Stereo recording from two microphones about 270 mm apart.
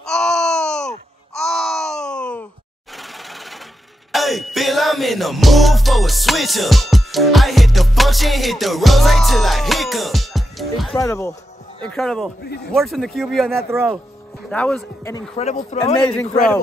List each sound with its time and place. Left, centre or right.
0.0 s a sound: centre
3.0 s sewing machine: centre
4.1 s music: centre
11.0 s speech: centre
12.4 s speech: left
12.7 s speech: centre
13.7 s speech: centre
14.5 s speech: centre
15.3 s speech: left